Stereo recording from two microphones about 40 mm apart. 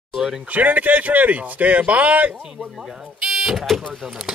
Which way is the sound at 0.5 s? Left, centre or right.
Right.